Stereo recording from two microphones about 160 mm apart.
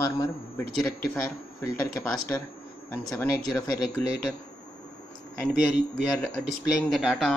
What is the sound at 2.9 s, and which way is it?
Speech, 15° left (ahead or behind).